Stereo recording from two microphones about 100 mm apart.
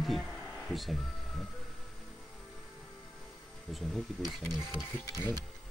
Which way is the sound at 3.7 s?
Centre (ahead or behind).